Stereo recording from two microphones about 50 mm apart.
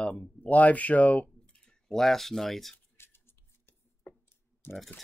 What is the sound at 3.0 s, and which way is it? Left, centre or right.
Scissors, left.